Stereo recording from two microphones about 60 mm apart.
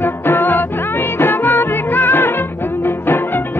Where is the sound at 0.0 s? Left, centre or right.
Left.